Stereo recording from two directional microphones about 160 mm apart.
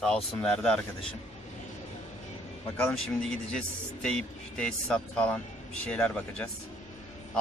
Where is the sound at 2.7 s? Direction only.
5° left (ahead or behind).